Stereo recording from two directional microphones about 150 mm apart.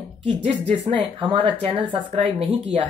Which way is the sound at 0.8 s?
35° right (ahead or behind).